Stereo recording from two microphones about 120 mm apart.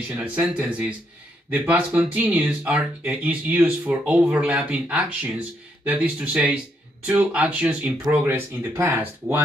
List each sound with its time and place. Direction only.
0.1 s speech: 10° right (ahead or behind)